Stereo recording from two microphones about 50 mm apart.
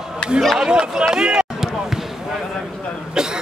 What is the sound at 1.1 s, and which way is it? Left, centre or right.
Run, centre.